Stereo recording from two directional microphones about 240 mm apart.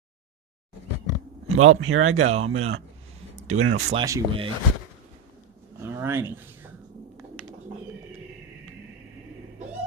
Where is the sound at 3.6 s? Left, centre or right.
Right.